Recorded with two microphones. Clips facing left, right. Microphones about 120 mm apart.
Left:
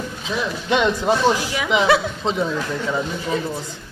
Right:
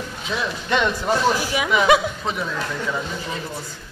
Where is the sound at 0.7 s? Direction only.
15° left (ahead or behind).